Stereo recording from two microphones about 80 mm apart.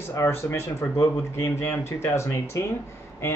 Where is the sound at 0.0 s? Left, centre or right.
Left.